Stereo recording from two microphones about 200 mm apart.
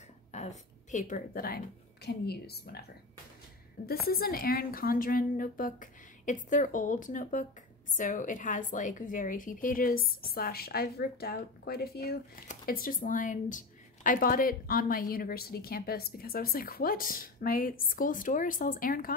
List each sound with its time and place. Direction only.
0.3 s a woman's voice: 35° left (ahead or behind); by 2.8 s 55° left (ahead or behind)
3.8 s a woman's voice: 50° left (ahead or behind)